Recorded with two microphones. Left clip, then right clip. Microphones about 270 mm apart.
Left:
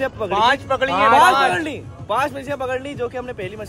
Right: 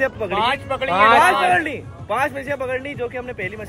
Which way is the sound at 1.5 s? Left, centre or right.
Centre.